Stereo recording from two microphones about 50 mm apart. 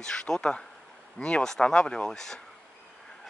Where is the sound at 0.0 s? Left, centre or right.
Centre.